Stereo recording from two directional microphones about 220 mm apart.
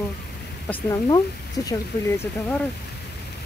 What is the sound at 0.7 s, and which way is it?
Speech, 10° left (ahead or behind).